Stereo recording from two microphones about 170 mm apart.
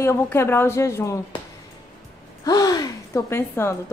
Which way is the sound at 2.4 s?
20° left (ahead or behind).